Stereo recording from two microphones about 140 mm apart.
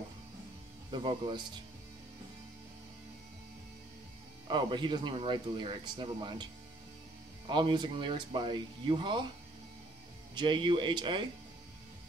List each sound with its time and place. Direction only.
0.9 s speech: 35° right (ahead or behind)
4.5 s speech: 35° right (ahead or behind)
7.4 s speech: 35° right (ahead or behind)
10.3 s speech: 35° right (ahead or behind)